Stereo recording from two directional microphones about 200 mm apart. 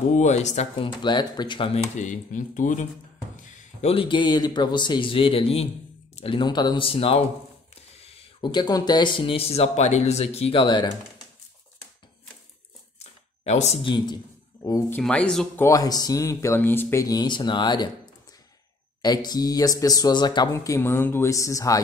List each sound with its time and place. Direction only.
0.1 s speech: 35° left (ahead or behind)
1.0 s speech: 20° left (ahead or behind)
13.0 s a sound: 35° left (ahead or behind)
13.9 s a man's voice: 20° left (ahead or behind)
15.0 s speech: 5° left (ahead or behind); by 17.9 s 20° left (ahead or behind)
19.0 s speech: 20° left (ahead or behind)